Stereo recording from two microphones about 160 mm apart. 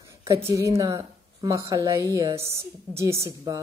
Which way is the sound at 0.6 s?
20° right (ahead or behind).